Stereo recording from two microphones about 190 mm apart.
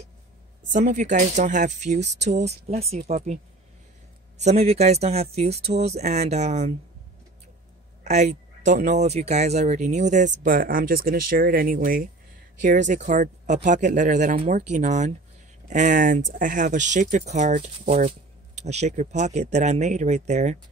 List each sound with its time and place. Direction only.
0.7 s speech: 40° right (ahead or behind)
4.4 s speech: 35° right (ahead or behind)
8.0 s speech: 40° right (ahead or behind)